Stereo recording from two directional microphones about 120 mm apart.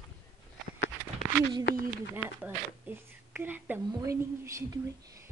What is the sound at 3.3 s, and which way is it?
Whispering, 15° right (ahead or behind).